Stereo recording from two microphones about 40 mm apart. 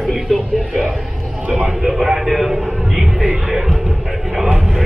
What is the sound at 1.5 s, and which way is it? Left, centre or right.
A man's voice, centre.